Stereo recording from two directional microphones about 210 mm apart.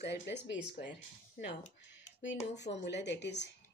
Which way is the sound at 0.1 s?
55° left (ahead or behind).